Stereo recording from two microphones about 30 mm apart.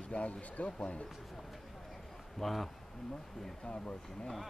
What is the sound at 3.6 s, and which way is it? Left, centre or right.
Speech, left.